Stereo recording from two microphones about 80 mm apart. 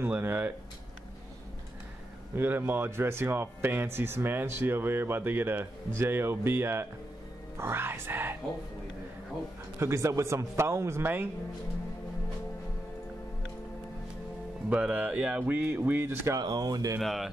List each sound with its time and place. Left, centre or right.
0.0 s speech: right
2.3 s speech: right
9.8 s a man's voice: right
14.7 s speech: centre
15.4 s speech: right
16.3 s speech: right
17.0 s speech: centre